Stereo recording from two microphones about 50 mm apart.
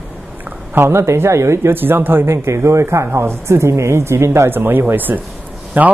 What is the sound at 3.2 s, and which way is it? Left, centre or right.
Speech, right.